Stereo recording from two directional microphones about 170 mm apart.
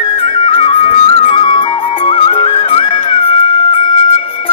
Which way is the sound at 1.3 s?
35° left (ahead or behind).